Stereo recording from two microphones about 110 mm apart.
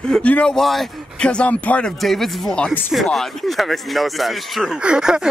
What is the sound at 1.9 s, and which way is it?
Speech, centre (ahead or behind).